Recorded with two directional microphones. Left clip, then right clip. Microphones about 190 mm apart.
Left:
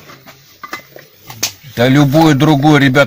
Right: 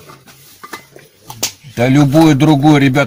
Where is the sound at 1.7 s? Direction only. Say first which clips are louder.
Left 1 dB; 20° left (ahead or behind).